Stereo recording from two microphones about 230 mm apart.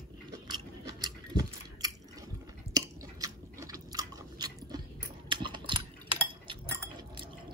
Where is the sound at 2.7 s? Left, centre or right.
Centre.